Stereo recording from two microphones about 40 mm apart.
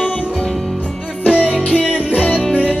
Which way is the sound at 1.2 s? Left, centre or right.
Right.